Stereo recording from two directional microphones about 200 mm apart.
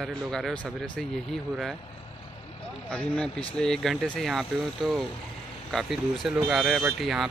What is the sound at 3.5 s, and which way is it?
Speech, 5° left (ahead or behind).